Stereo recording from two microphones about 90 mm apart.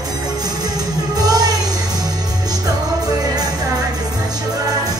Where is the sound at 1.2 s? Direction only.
45° right (ahead or behind).